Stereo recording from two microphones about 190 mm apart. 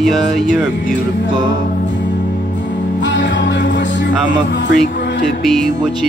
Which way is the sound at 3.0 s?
70° left (ahead or behind).